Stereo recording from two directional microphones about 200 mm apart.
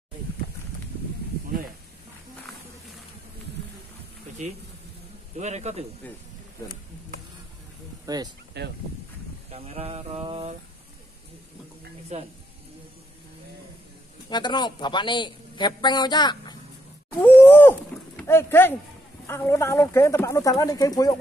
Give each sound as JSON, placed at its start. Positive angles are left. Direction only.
{"t": 5.4, "sound": "a man's voice", "side_deg": -35}
{"t": 8.1, "sound": "mantra", "side_deg": -20}
{"t": 8.6, "sound": "speech", "side_deg": -55}
{"t": 9.5, "sound": "mantra", "side_deg": -30}
{"t": 12.1, "sound": "a man's voice", "side_deg": -35}
{"t": 14.3, "sound": "a man's voice", "side_deg": 20}
{"t": 17.2, "sound": "speech", "side_deg": 10}